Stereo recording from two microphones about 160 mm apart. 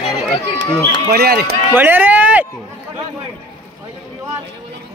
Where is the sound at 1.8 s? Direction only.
10° right (ahead or behind).